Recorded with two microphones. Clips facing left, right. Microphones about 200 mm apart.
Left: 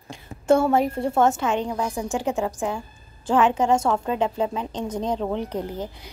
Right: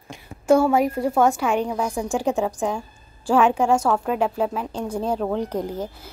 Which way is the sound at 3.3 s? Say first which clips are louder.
Right 1 dB; 10° right (ahead or behind).